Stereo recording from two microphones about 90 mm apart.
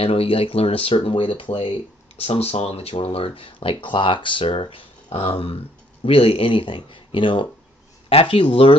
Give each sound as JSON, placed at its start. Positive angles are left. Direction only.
{"t": 0.0, "sound": "speech", "side_deg": 90}
{"t": 8.1, "sound": "speech", "side_deg": 90}